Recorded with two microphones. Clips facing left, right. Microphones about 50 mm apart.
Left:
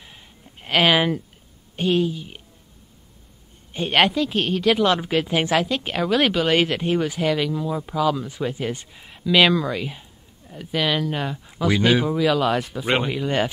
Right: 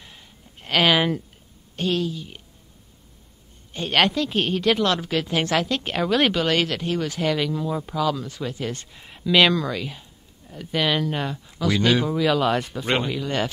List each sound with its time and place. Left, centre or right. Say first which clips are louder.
0.0 s a sound: left 1 dB; centre
1.8 s speech: left 3 dB; centre
3.7 s speech: left 2 dB; centre
4.8 s speech: left 3 dB; centre
6.5 s speech: left 3 dB; centre
7.2 s speech: left 1 dB; centre
11.5 s speech: left 2 dB; centre
12.9 s speech: left 2 dB; centre